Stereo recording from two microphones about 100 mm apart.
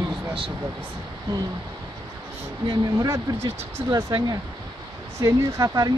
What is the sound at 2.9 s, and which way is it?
Speech, 35° right (ahead or behind).